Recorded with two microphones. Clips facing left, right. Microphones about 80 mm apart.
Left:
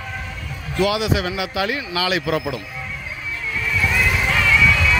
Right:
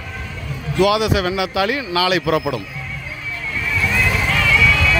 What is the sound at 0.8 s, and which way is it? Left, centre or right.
A man's voice, right.